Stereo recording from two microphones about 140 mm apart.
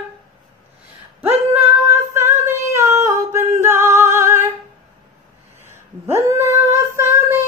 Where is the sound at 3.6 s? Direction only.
15° right (ahead or behind).